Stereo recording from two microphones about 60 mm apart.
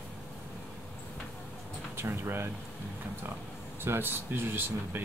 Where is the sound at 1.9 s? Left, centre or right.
Right.